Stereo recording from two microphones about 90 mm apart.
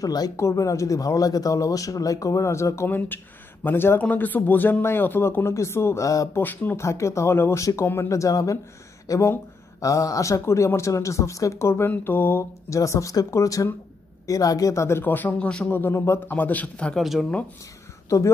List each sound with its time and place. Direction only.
0.0 s a woman's voice: 45° left (ahead or behind)
0.4 s speech: 35° left (ahead or behind)
6.4 s speech: 20° left (ahead or behind)
6.8 s speech: 30° left (ahead or behind); by 15.7 s 10° left (ahead or behind)
15.7 s speech: 25° left (ahead or behind)
17.0 s speech: centre (ahead or behind)
18.1 s speech: 35° left (ahead or behind)